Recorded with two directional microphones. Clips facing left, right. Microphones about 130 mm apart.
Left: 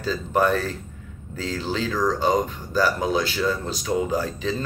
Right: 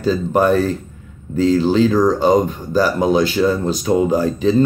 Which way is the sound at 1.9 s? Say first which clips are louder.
Right 9 dB; 45° right (ahead or behind).